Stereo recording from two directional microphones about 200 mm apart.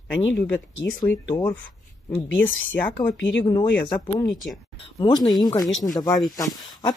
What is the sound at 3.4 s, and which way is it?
Speech, 25° left (ahead or behind).